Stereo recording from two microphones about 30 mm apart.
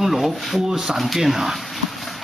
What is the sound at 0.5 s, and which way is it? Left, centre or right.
Speech, right.